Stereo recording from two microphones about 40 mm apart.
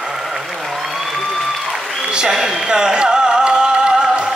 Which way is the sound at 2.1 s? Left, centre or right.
Centre.